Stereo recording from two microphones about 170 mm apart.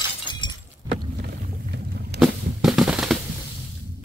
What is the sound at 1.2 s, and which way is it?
Rowboat, 75° right (ahead or behind).